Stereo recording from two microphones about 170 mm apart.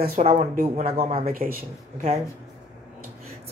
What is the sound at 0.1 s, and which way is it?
Speech, 40° right (ahead or behind).